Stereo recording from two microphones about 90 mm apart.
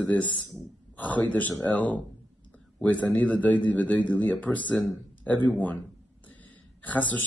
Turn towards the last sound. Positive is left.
turn(degrees=20)  # may be behind; listen again after turning